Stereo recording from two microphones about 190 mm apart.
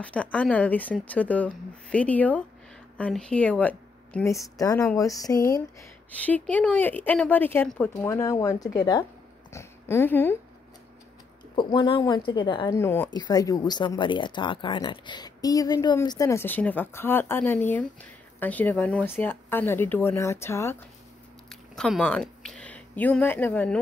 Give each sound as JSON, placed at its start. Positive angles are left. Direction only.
{"t": 0.0, "sound": "a woman's voice", "side_deg": 5}
{"t": 11.5, "sound": "a woman's voice", "side_deg": 25}
{"t": 21.5, "sound": "speech", "side_deg": 0}